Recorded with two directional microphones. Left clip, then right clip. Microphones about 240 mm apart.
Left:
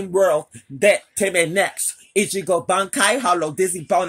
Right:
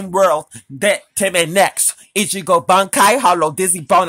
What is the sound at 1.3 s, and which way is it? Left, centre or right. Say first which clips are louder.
Speech: right 5 dB; right.